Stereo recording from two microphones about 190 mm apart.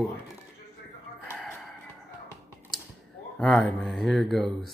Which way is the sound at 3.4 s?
5° left (ahead or behind).